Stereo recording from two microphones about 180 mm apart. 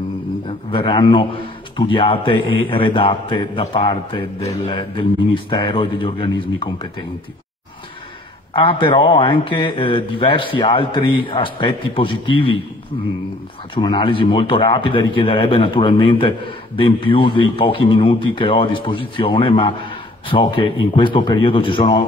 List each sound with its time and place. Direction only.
0.5 s a man's voice: 30° left (ahead or behind)
8.5 s a man's voice: 30° left (ahead or behind)
13.7 s a man's voice: 25° left (ahead or behind)